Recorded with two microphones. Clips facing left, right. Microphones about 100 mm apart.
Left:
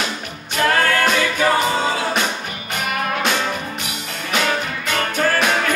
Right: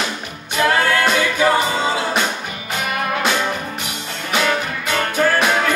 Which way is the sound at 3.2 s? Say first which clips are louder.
Right 1 dB; 10° right (ahead or behind).